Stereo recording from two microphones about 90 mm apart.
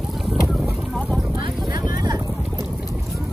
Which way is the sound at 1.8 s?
45° right (ahead or behind).